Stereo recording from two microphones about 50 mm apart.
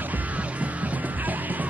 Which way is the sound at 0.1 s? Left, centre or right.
Right.